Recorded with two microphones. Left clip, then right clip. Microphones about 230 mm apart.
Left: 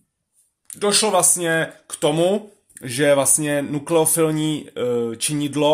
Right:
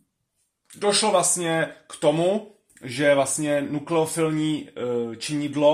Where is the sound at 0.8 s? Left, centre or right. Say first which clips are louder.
Left 2 dB; left.